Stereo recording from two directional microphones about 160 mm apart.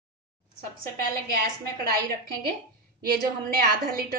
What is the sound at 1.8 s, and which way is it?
Speech, 70° right (ahead or behind).